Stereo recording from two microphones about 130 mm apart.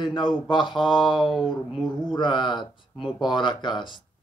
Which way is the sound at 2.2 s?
35° left (ahead or behind).